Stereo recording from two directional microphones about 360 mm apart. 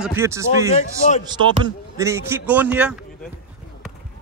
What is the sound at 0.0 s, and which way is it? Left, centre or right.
Speech, centre.